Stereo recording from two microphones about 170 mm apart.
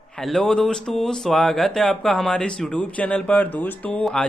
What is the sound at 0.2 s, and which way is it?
Speech, centre (ahead or behind).